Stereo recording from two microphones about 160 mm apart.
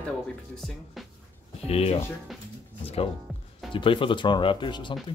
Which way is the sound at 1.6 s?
40° left (ahead or behind).